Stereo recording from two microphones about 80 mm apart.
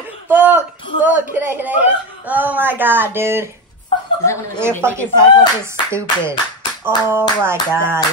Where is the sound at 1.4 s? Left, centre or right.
Right.